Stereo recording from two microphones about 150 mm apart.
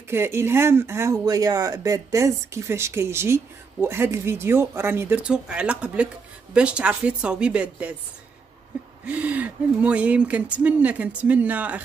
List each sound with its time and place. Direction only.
0.1 s speech: 15° right (ahead or behind)
9.0 s speech: 10° right (ahead or behind)